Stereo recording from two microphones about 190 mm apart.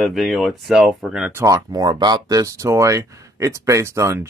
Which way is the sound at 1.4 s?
20° right (ahead or behind).